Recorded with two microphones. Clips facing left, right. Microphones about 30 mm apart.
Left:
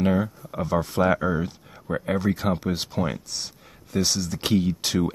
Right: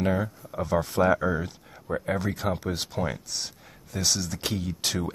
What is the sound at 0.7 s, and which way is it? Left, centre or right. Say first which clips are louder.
Speech: left 1 dB; centre.